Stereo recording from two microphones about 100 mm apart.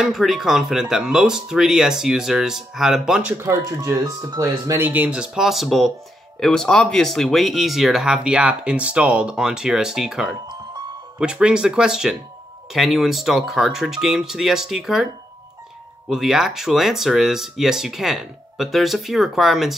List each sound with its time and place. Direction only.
0.0 s speech: centre (ahead or behind)
3.4 s speech: 30° right (ahead or behind)
4.8 s speech: 20° right (ahead or behind)
16.1 s speech: 5° right (ahead or behind)